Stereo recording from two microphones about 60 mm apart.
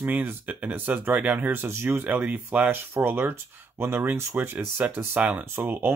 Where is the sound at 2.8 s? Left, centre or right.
Right.